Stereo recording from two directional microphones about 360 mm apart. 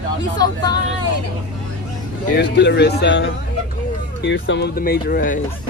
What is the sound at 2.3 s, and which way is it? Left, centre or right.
Speech, left.